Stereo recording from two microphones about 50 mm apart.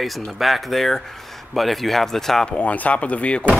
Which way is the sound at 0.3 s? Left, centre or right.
Centre.